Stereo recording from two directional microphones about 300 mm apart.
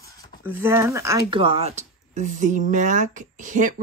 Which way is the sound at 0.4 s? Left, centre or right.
Centre.